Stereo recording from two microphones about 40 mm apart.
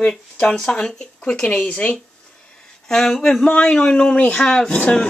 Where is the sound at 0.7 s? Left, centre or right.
Left.